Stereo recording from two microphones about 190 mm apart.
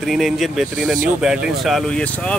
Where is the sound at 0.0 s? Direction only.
Centre (ahead or behind).